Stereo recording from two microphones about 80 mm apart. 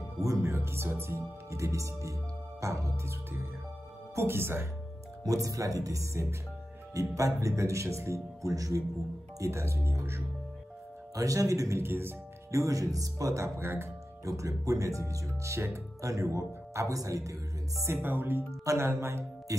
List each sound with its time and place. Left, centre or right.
0.2 s speech: right
5.2 s speech: right
17.9 s speech: right